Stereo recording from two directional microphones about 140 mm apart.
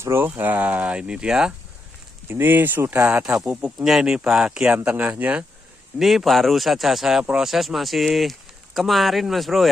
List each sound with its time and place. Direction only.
0.0 s speech: 15° right (ahead or behind)
3.3 s speech: 5° right (ahead or behind)